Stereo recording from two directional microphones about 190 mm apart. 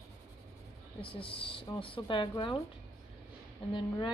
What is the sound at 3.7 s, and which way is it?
Speech, 25° left (ahead or behind).